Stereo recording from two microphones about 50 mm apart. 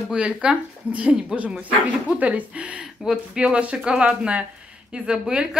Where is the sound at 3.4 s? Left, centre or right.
Right.